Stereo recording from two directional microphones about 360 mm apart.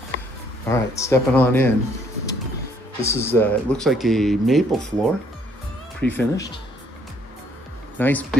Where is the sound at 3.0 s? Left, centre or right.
Centre.